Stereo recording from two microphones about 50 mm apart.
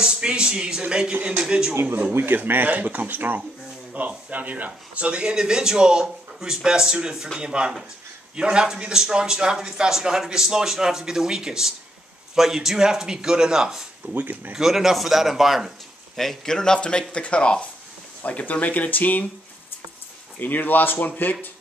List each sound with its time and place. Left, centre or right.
0.0 s speech: centre
1.1 s a man's voice: right
1.4 s speech: centre
2.1 s a man's voice: right; by 13.8 s centre
14.0 s speech: right
14.5 s speech: centre
16.2 s a man's voice: centre; by 19.2 s left
20.3 s speech: left